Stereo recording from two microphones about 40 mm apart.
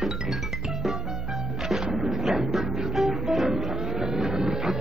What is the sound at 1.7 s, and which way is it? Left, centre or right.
Music, centre.